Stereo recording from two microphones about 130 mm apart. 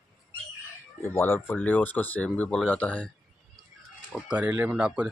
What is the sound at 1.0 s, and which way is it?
Speech, 20° left (ahead or behind).